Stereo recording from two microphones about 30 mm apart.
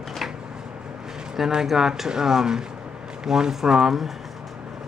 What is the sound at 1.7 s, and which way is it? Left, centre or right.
Speech, centre.